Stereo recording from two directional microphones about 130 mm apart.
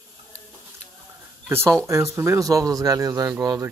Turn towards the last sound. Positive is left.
turn(degrees=-30)  # may be behind; listen again after turning